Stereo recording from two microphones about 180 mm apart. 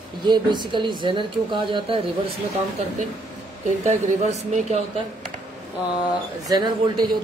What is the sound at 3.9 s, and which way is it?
Speech, 40° right (ahead or behind).